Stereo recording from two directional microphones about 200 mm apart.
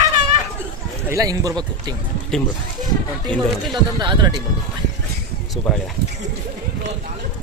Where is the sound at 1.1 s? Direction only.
15° right (ahead or behind).